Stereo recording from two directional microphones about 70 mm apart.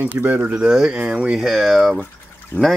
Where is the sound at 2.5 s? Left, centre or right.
Left.